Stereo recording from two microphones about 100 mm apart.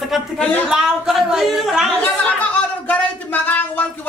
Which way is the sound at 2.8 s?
15° left (ahead or behind).